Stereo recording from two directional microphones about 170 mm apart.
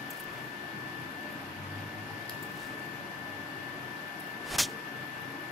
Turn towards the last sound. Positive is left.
turn(degrees=0)  # may be behind; listen again after turning